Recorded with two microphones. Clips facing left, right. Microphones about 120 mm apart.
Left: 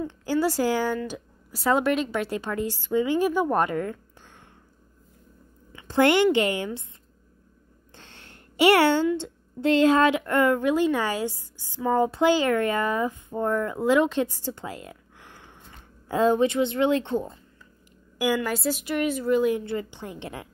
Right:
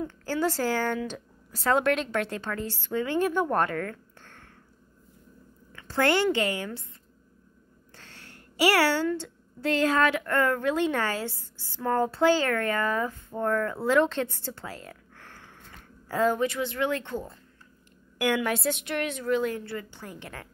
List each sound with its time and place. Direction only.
0.2 s speech: 10° left (ahead or behind)
5.7 s a woman's voice: 20° left (ahead or behind)
7.9 s a child's voice: 25° left (ahead or behind)
18.1 s a woman's voice: 5° left (ahead or behind)
19.6 s a woman's voice: 20° left (ahead or behind)